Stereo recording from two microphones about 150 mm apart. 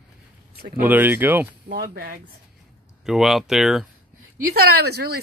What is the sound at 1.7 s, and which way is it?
Speech, 90° right.